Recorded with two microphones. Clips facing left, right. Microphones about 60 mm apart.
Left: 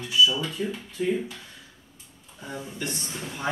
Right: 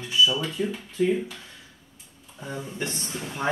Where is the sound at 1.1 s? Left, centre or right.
Centre.